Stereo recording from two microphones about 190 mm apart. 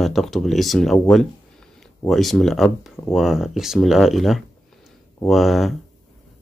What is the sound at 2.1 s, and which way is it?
Speech, centre (ahead or behind).